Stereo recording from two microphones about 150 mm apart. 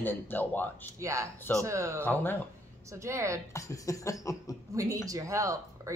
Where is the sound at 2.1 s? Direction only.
15° left (ahead or behind).